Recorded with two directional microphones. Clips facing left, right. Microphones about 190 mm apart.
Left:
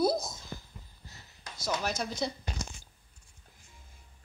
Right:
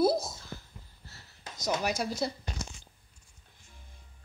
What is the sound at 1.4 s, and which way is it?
Speech, 20° right (ahead or behind).